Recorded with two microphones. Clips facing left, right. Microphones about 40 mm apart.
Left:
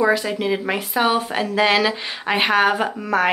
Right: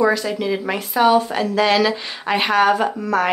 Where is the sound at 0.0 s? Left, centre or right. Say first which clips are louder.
Right 1 dB; centre.